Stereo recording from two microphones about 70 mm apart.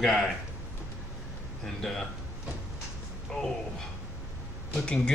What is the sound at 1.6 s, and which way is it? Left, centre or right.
Speech, centre.